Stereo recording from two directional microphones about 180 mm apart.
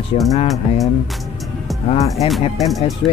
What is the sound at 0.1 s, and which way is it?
Speech, 35° left (ahead or behind).